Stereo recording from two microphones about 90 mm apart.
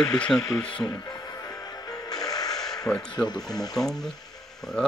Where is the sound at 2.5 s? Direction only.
5° left (ahead or behind).